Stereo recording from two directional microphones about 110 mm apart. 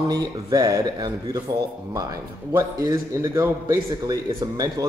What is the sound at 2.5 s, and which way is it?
A man's voice, 30° right (ahead or behind).